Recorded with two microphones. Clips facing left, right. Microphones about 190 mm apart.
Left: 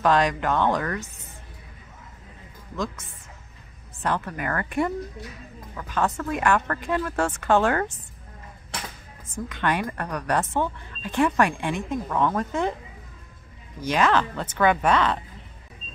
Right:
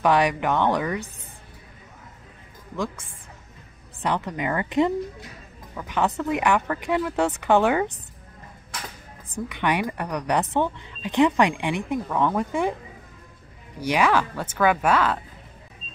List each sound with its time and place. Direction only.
0.0 s speech: 15° right (ahead or behind)
2.7 s speech: 15° right (ahead or behind)
9.5 s speech: 15° right (ahead or behind)
13.7 s speech: 10° right (ahead or behind)